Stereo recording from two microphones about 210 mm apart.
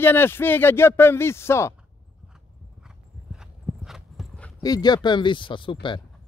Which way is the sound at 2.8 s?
5° right (ahead or behind).